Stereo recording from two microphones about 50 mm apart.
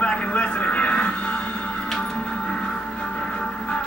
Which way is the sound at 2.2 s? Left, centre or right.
Centre.